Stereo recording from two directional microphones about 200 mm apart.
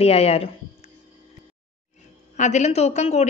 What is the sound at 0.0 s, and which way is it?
Speech, 30° left (ahead or behind).